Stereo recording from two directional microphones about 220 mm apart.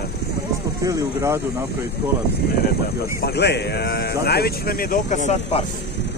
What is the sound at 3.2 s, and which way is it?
Speech, 50° left (ahead or behind).